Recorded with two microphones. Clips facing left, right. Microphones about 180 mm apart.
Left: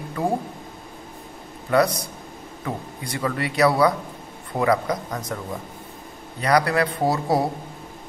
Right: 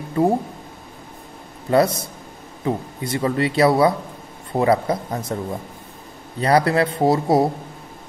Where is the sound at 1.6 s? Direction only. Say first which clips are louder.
Right 3 dB; 25° right (ahead or behind).